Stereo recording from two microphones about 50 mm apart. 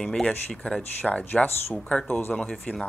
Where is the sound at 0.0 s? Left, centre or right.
Centre.